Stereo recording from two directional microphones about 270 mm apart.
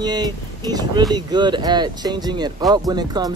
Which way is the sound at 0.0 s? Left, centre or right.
Centre.